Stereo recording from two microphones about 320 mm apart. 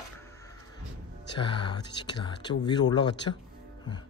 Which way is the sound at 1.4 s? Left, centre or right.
Centre.